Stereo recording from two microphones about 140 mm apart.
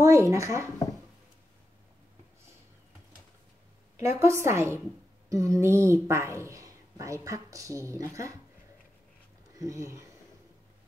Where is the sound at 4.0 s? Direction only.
20° right (ahead or behind).